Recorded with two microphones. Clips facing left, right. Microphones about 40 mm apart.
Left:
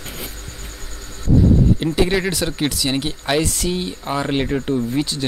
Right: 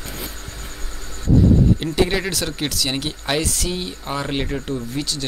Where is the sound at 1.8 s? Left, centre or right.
Centre.